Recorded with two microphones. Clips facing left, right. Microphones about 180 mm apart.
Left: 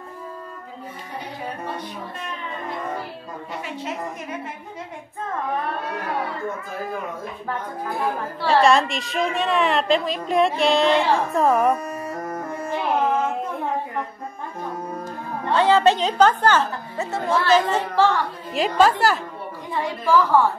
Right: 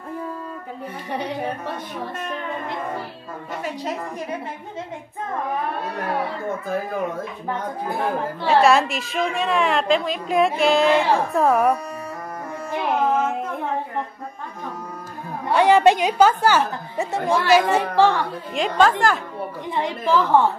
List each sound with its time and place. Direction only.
8.5 s a woman's voice: 5° right (ahead or behind)
15.4 s a woman's voice: 15° right (ahead or behind)
18.5 s a woman's voice: 5° left (ahead or behind)
19.7 s a woman's voice: 20° right (ahead or behind)